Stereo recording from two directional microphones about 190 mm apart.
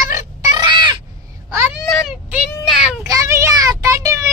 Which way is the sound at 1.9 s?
Centre (ahead or behind).